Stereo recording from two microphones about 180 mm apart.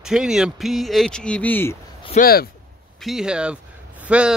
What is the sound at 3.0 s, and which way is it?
A man's voice, 5° right (ahead or behind).